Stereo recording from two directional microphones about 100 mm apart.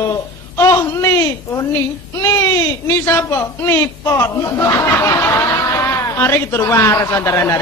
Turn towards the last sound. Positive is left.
turn(degrees=30)  # may be behind; listen again after turning